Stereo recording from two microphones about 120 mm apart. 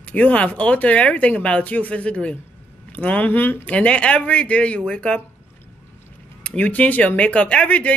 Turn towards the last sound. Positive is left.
turn(degrees=10)  # may be behind; listen again after turning